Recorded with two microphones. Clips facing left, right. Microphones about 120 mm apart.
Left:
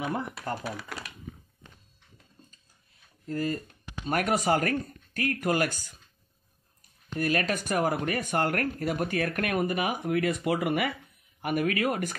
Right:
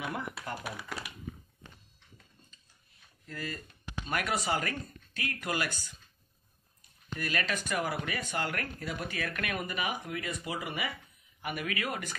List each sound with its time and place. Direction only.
0.7 s speech: 5° right (ahead or behind)
3.3 s speech: 40° left (ahead or behind)
7.2 s speech: 45° left (ahead or behind)